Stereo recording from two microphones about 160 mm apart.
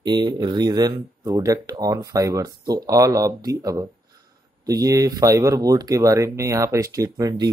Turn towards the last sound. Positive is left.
turn(degrees=-25)  # may be behind; listen again after turning